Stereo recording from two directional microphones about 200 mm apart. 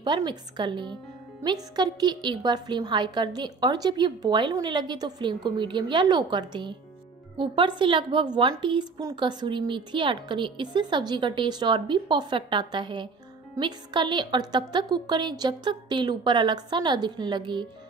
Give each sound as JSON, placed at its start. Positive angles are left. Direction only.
{"t": 0.0, "sound": "a woman's voice", "side_deg": -20}